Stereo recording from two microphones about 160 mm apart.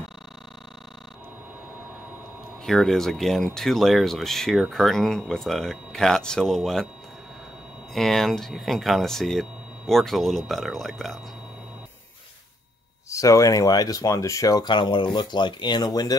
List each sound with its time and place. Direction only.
2.6 s speech: centre (ahead or behind)
7.9 s speech: centre (ahead or behind)
13.1 s speech: 20° left (ahead or behind)